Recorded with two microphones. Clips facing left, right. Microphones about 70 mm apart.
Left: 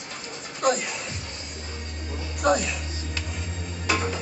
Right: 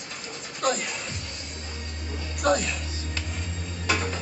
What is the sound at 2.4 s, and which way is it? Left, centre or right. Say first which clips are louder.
Music: left 1 dB; centre.